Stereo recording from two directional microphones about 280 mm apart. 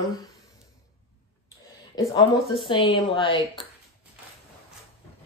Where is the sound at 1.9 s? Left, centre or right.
Centre.